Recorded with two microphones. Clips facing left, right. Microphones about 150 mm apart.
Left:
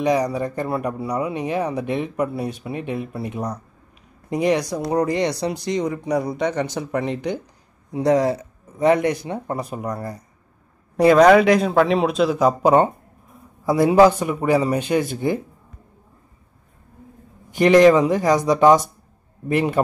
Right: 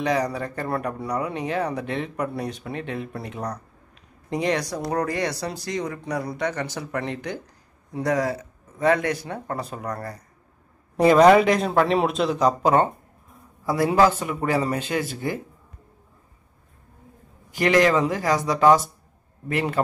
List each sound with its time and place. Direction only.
0.0 s speech: 15° left (ahead or behind)
11.0 s speech: centre (ahead or behind); by 15.3 s 20° left (ahead or behind)
17.5 s speech: 25° left (ahead or behind)